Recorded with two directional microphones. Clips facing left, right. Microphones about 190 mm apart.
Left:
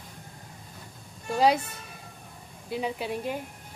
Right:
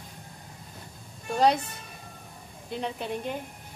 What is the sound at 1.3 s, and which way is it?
Speech, 5° left (ahead or behind).